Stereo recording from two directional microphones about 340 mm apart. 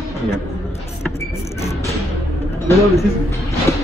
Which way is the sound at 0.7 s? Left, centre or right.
Centre.